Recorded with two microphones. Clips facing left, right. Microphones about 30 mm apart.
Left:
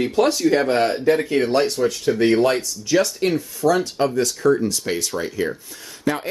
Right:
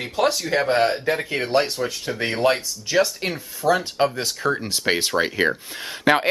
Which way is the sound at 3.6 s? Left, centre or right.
Right.